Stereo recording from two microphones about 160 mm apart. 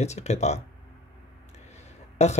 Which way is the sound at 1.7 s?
45° left (ahead or behind).